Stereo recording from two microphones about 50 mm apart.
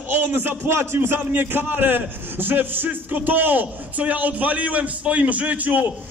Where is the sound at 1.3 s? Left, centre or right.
Right.